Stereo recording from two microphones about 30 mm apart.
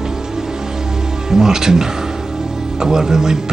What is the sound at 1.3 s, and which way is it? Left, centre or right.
Speech, centre.